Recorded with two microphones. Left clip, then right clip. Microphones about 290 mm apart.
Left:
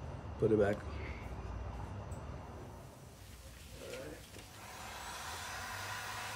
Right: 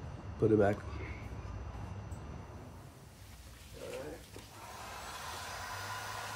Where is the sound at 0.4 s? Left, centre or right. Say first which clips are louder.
Right 2 dB; centre.